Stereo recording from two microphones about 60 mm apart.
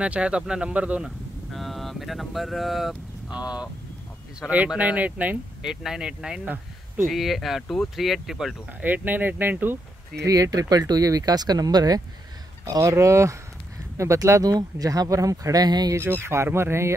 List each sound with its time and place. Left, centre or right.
0.0 s speech: centre
1.5 s speech: centre
4.7 s speech: right
5.6 s speech: centre
7.1 s speech: centre
7.6 s speech: centre
7.9 s speech: centre
8.8 s speech: right
10.2 s speech: right
12.9 s speech: right
14.1 s speech: right
16.0 s speech: right